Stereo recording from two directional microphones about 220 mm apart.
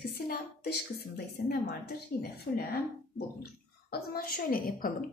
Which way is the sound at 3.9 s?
45° left (ahead or behind).